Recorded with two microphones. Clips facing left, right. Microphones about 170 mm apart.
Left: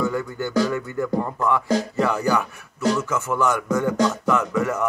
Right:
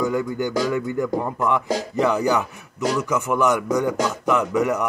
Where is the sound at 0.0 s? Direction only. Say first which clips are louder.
Right 2 dB; 15° right (ahead or behind).